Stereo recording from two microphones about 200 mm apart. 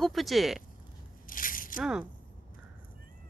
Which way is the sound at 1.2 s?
45° left (ahead or behind).